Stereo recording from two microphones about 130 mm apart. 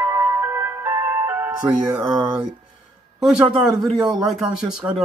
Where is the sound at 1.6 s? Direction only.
30° right (ahead or behind).